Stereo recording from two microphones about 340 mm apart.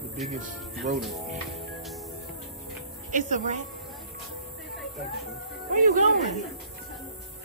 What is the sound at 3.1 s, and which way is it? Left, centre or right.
Speech, right.